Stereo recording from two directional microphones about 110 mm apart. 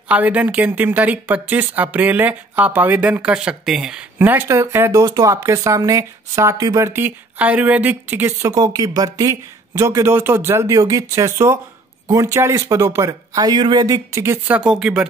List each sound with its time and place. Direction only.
0.1 s speech: 15° right (ahead or behind)
4.2 s speech: 20° right (ahead or behind)
14.5 s speech: 10° right (ahead or behind)